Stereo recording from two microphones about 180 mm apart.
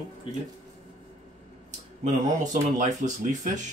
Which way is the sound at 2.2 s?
45° right (ahead or behind).